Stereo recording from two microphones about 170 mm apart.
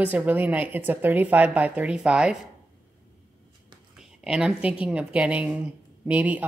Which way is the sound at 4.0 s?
5° right (ahead or behind).